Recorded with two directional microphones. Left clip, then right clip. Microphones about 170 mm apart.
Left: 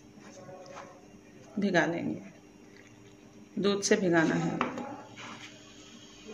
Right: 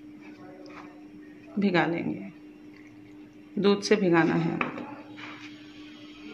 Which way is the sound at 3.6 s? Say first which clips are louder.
Right 4 dB; 50° right (ahead or behind).